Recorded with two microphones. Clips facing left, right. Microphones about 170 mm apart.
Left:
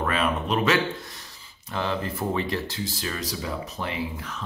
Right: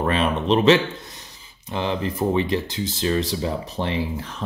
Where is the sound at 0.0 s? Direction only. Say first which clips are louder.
Right 4 dB; 30° right (ahead or behind).